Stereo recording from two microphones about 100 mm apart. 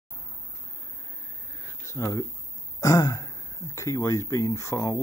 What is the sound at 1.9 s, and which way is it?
Speech, 30° left (ahead or behind).